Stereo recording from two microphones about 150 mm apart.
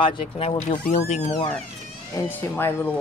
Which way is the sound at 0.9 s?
50° left (ahead or behind).